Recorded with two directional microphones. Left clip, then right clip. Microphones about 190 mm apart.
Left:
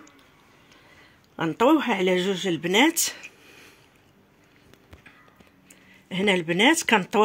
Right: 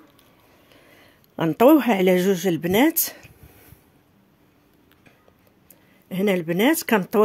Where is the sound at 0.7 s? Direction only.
70° right (ahead or behind).